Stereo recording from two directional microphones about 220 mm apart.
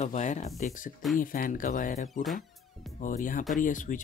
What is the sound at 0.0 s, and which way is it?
Speech, 30° left (ahead or behind).